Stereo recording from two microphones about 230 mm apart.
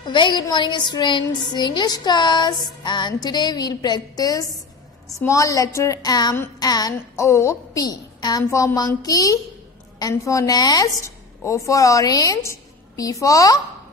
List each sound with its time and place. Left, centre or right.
0.0 s a woman's voice: centre